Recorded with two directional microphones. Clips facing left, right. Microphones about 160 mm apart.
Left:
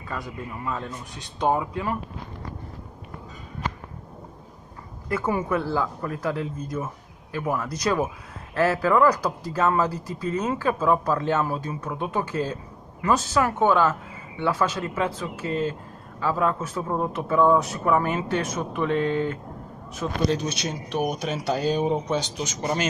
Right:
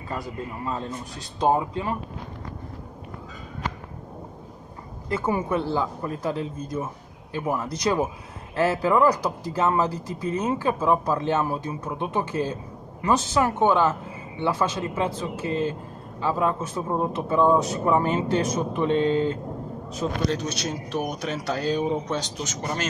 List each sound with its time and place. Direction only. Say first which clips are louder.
1.4 s speech: right 1 dB; 25° right (ahead or behind)
5.1 s speech: even; 25° right (ahead or behind)
20.2 s speech: left 1 dB; centre (ahead or behind)
22.6 s speech: left 4 dB; 10° left (ahead or behind)